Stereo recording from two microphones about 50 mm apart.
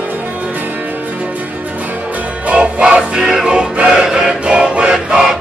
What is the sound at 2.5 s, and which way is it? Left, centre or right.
Music, centre.